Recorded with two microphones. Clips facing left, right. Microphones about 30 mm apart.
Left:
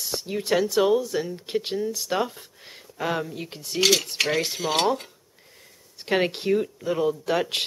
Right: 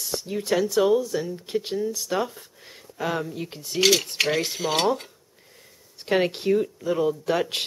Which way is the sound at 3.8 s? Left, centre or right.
Centre.